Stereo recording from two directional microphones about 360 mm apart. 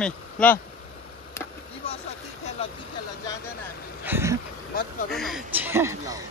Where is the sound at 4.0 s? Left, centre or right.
Centre.